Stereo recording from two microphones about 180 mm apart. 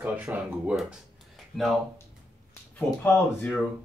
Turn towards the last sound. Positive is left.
turn(degrees=5)  # may be behind; listen again after turning